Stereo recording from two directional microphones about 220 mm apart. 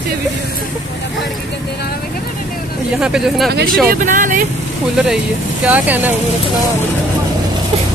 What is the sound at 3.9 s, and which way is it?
Speech, 35° right (ahead or behind).